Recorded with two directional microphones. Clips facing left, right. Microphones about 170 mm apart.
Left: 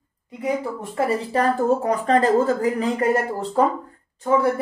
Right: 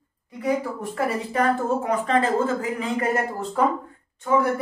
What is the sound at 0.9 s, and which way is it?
A woman's voice, 35° left (ahead or behind).